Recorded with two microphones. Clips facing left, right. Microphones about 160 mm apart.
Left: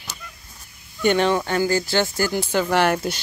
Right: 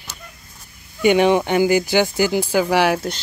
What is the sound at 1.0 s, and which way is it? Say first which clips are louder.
Speech: right 4 dB; 10° right (ahead or behind).